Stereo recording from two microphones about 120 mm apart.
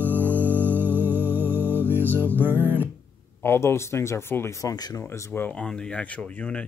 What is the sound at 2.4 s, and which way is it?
Music, 15° right (ahead or behind).